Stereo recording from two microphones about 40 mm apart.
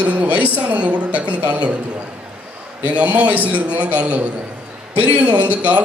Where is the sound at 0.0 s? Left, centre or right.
Right.